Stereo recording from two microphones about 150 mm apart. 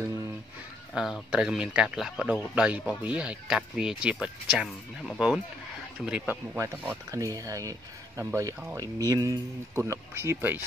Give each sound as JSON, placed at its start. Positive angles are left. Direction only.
{"t": 0.9, "sound": "speech", "side_deg": -5}